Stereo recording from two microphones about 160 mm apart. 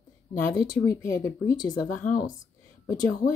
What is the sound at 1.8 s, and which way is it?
Speech, 55° left (ahead or behind).